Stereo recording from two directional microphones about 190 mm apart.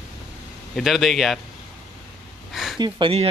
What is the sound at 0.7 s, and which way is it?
Speech, centre (ahead or behind).